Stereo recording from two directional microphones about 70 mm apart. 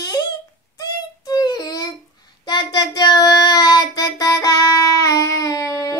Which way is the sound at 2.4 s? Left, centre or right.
Left.